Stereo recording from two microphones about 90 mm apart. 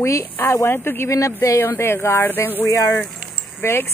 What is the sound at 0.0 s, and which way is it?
Speech, 35° left (ahead or behind).